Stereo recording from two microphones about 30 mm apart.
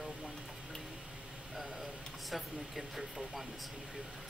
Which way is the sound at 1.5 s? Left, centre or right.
Centre.